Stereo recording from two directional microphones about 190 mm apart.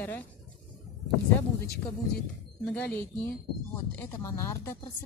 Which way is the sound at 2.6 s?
5° left (ahead or behind).